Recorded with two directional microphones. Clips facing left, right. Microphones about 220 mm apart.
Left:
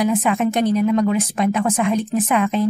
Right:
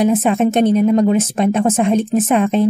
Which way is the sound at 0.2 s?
25° right (ahead or behind).